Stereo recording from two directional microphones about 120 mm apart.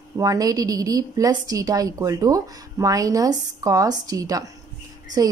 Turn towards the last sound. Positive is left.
turn(degrees=-30)  # may be behind; listen again after turning